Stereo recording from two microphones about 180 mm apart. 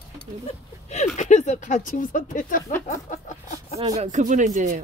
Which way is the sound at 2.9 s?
45° left (ahead or behind).